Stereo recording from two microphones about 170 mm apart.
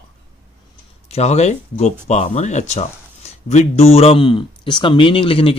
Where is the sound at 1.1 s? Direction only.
40° left (ahead or behind).